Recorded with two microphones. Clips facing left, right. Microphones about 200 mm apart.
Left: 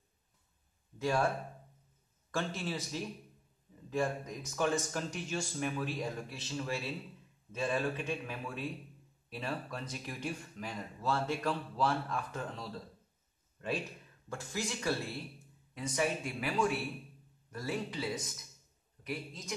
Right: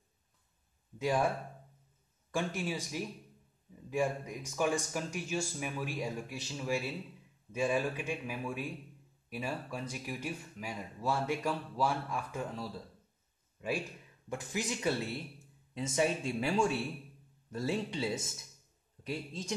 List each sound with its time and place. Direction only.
0.9 s speech: 15° right (ahead or behind)
2.3 s speech: 10° right (ahead or behind)
14.3 s speech: 15° right (ahead or behind)